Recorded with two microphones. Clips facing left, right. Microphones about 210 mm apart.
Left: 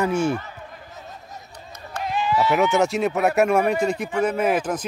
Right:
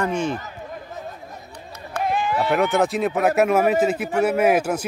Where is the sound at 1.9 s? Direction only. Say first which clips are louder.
Right 1 dB; 55° right (ahead or behind).